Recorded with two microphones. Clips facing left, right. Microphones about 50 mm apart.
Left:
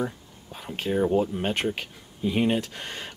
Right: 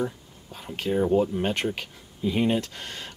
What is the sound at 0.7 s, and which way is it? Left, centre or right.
Speech, centre.